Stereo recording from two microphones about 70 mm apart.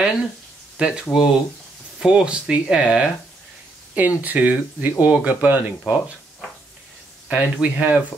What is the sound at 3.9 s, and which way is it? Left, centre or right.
Speech, right.